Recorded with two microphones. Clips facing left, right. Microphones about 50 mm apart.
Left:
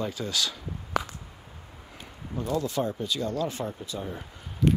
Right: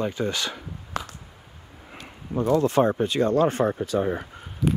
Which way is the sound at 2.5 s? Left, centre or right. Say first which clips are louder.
Right 8 dB; right.